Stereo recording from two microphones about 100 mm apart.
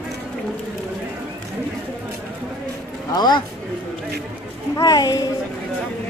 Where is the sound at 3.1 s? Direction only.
45° left (ahead or behind).